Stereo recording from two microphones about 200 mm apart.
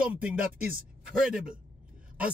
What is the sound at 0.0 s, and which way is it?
Speech, 5° right (ahead or behind).